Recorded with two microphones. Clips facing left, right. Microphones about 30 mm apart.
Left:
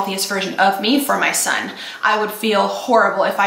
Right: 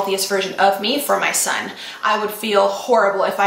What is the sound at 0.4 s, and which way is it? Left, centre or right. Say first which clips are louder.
A woman's voice: left 2 dB; centre.